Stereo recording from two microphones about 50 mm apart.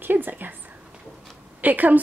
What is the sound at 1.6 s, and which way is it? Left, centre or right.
Speech, right.